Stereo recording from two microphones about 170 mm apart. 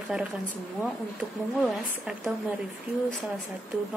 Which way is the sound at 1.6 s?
Centre (ahead or behind).